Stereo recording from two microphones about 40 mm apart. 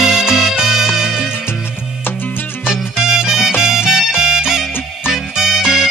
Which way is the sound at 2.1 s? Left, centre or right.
Left.